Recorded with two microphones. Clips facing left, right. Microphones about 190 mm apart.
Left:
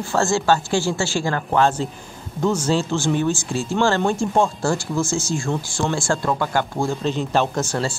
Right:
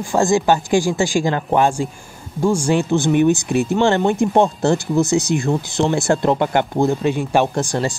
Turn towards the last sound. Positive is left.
turn(degrees=-15)  # may be behind; listen again after turning